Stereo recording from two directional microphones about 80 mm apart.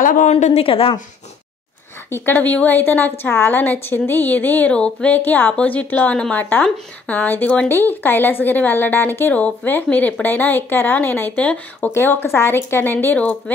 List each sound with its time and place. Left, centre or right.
0.7 s speech: left
2.0 s a woman's voice: left
11.9 s a woman's voice: left